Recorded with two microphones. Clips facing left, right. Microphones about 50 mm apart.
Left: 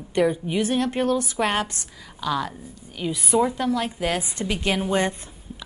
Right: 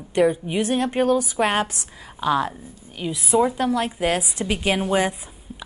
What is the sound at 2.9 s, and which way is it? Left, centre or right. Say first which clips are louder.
A woman's voice: right 2 dB; centre.